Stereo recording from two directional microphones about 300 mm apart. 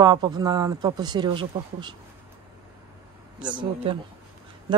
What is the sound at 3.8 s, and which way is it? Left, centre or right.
Speech, centre.